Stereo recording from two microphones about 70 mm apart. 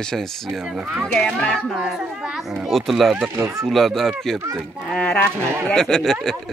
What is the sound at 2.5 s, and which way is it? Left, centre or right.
Speech, centre.